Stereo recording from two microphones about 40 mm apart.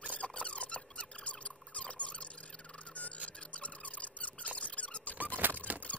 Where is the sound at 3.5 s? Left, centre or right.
Left.